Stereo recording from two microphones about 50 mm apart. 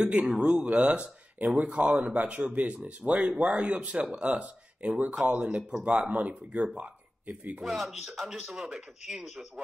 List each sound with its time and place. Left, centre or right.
0.0 s speech: right
5.6 s speech: centre
5.9 s speech: right
7.6 s speech: centre